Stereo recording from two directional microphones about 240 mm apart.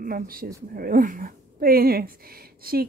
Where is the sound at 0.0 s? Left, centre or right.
Right.